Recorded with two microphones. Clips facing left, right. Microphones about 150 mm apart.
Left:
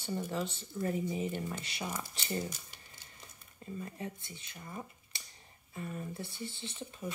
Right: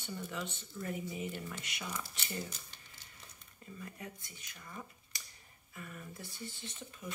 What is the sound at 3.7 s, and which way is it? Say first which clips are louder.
Speech: left 6 dB; 30° left (ahead or behind).